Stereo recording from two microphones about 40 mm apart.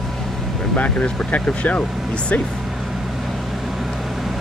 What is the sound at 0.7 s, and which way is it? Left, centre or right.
Speech, left.